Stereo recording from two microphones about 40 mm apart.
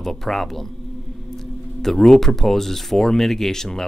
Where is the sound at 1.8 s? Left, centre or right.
Centre.